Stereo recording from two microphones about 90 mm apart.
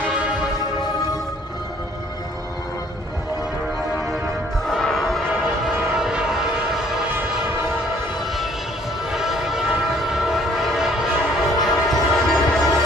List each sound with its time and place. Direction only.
0.0 s church bell: 5° left (ahead or behind)
4.6 s music: 5° left (ahead or behind)
5.9 s a sound: 5° right (ahead or behind)
9.1 s train: 5° right (ahead or behind)